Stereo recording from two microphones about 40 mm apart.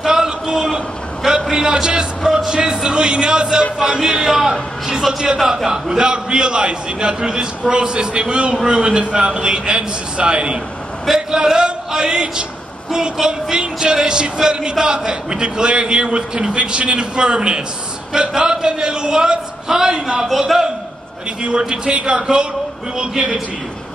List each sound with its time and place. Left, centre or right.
0.0 s a sound: centre
1.5 s speech: centre
4.2 s a man's voice: centre; by 10.6 s right
11.1 s a sound: centre
12.9 s speech: centre
20.2 s a man's voice: centre
21.4 s speech: right